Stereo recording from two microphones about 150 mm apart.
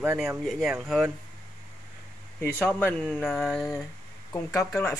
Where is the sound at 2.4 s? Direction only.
10° left (ahead or behind).